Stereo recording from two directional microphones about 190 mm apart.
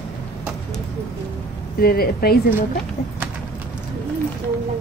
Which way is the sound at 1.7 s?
50° left (ahead or behind).